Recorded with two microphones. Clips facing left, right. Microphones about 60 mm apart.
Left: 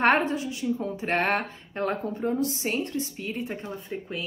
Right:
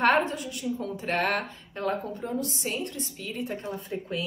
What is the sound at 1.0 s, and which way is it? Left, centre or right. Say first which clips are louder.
A woman's voice: left 2 dB; left.